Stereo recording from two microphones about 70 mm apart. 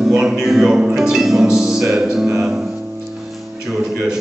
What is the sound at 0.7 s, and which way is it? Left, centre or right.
Music, centre.